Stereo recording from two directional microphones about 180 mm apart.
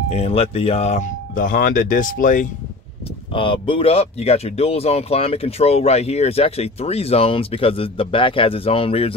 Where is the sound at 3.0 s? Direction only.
30° left (ahead or behind).